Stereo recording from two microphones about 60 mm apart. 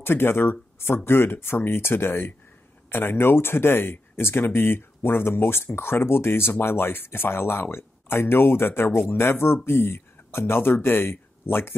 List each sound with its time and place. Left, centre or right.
0.0 s speech: left